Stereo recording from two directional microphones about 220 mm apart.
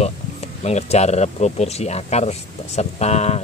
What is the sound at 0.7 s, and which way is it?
Speech, 30° left (ahead or behind).